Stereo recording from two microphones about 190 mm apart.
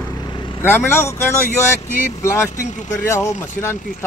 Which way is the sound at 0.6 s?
10° left (ahead or behind).